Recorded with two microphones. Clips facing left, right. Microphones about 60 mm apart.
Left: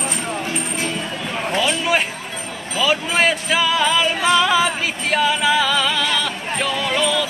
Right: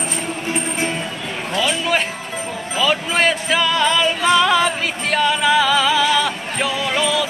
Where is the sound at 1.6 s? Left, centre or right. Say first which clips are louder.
Right 1 dB; centre.